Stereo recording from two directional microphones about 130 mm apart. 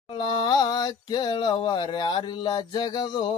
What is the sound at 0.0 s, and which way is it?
Mantra, 40° left (ahead or behind).